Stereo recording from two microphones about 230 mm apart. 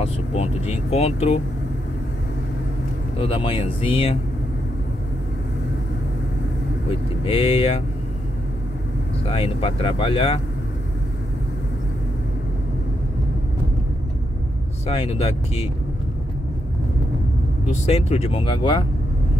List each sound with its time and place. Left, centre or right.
0.0 s speech: left
3.2 s speech: left
6.9 s speech: left
9.2 s speech: left
14.9 s speech: left
17.6 s speech: left